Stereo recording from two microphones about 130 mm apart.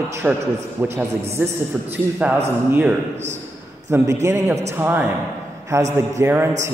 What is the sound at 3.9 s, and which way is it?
A man's voice, 20° right (ahead or behind).